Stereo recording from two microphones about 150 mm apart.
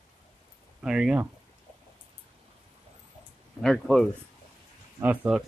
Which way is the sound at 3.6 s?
5° left (ahead or behind).